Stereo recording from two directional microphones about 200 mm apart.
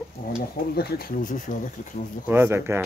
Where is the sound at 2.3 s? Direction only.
10° right (ahead or behind).